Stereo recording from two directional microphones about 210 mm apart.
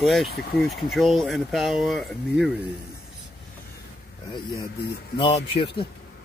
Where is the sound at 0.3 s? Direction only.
50° left (ahead or behind).